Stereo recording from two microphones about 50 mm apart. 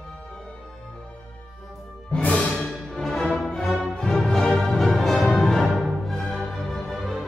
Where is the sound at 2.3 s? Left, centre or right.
Left.